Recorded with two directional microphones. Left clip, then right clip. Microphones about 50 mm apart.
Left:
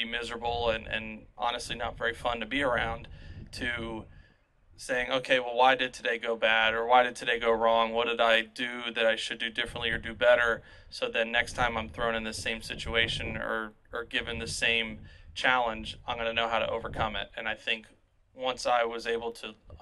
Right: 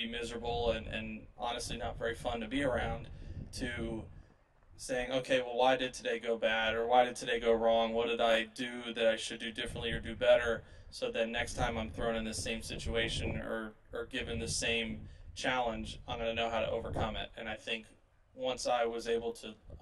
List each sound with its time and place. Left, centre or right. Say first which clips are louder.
0.0 s speech: left 6 dB; left
13.4 s speech: left 7 dB; left